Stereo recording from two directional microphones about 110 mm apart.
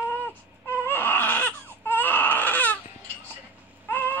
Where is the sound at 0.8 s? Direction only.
20° left (ahead or behind).